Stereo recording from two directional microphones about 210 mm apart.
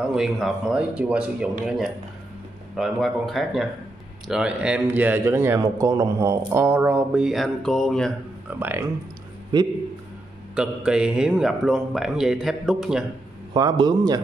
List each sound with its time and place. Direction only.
0.0 s a man's voice: 5° right (ahead or behind)
2.8 s a man's voice: centre (ahead or behind)
8.5 s speech: 10° right (ahead or behind)
10.5 s a man's voice: 5° right (ahead or behind)
13.5 s a man's voice: 20° right (ahead or behind)